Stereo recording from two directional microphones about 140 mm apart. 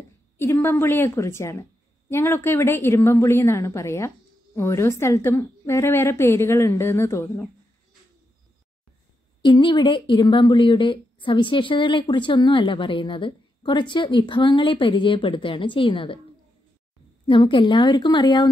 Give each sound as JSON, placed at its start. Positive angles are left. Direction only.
{"t": 0.4, "sound": "a woman's voice", "side_deg": 15}
{"t": 9.4, "sound": "speech", "side_deg": 35}
{"t": 17.3, "sound": "speech", "side_deg": 35}